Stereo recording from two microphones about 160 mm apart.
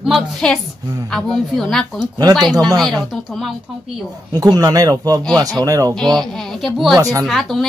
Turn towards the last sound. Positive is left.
turn(degrees=0)  # may be behind; listen again after turning